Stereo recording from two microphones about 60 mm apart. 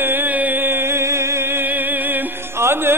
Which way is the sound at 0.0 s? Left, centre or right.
Right.